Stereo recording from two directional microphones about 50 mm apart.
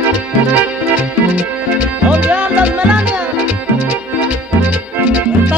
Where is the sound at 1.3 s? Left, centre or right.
Right.